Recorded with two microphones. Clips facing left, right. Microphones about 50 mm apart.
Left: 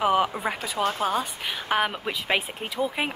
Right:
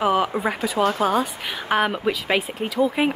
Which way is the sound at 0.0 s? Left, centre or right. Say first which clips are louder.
Right 2 dB; centre.